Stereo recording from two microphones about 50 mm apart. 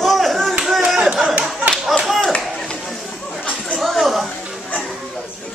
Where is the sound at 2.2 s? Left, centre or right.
Centre.